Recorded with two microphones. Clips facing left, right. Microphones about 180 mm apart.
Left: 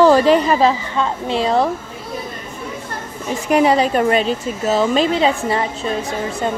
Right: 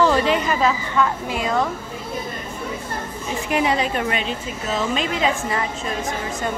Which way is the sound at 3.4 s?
40° left (ahead or behind).